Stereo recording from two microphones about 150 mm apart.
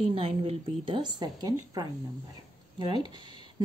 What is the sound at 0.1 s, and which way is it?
Speech, 40° right (ahead or behind).